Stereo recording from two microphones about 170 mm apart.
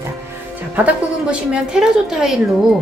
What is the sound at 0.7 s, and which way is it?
A woman's voice, 5° right (ahead or behind).